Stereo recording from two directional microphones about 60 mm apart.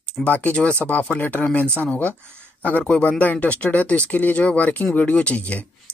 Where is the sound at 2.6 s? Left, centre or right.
Left.